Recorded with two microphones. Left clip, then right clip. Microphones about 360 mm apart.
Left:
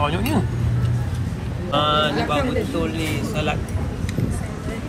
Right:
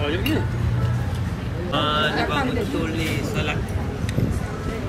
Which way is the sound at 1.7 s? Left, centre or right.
Left.